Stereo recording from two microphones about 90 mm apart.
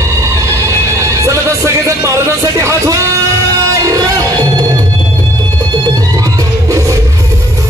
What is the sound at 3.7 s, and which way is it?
Music, 40° right (ahead or behind).